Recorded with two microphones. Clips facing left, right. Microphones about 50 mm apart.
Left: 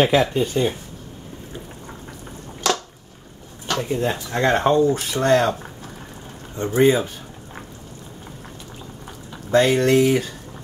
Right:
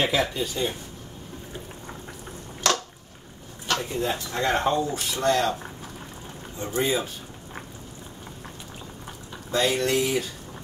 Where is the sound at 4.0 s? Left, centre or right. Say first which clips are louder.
Left 5 dB; left.